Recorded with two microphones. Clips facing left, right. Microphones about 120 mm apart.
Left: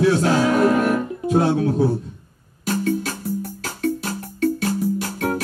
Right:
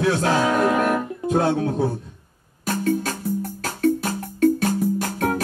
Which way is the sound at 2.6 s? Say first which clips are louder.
Even; 50° right (ahead or behind).